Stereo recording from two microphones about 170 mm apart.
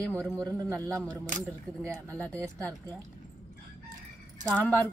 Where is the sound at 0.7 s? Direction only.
5° left (ahead or behind).